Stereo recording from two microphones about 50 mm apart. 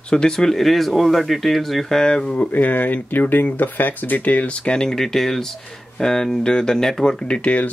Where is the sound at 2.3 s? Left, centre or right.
Left.